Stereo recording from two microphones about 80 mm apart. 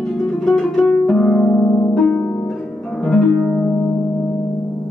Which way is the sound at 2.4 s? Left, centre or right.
Centre.